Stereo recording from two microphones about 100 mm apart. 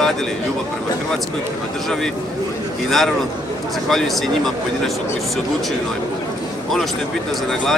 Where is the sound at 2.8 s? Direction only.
5° left (ahead or behind).